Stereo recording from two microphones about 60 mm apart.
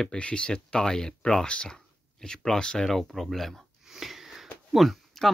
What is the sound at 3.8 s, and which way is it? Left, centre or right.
Sniff, centre.